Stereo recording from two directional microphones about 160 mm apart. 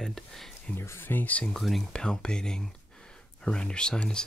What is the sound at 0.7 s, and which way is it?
Speech, 15° left (ahead or behind).